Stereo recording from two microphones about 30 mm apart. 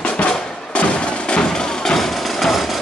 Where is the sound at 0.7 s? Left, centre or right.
Left.